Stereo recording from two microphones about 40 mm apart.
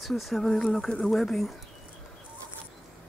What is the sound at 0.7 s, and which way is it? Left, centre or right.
Speech, centre.